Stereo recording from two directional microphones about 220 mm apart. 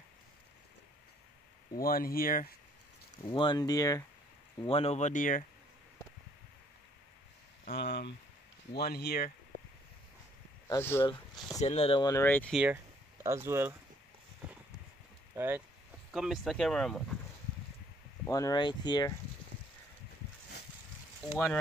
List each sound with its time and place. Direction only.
1.8 s speech: 40° left (ahead or behind)
3.3 s speech: 20° left (ahead or behind)
4.6 s speech: 25° left (ahead or behind)
7.7 s speech: 55° left (ahead or behind)
10.7 s speech: 10° left (ahead or behind)
11.6 s speech: 25° left (ahead or behind); by 12.5 s 10° left (ahead or behind)
12.5 s speech: 10° right (ahead or behind)
15.3 s speech: 10° right (ahead or behind)
18.2 s speech: 15° left (ahead or behind)